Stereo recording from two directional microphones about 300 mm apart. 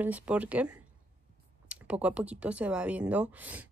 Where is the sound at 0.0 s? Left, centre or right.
Centre.